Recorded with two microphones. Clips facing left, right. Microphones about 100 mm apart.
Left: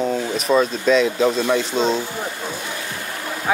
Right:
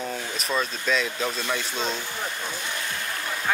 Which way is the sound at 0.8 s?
Centre (ahead or behind).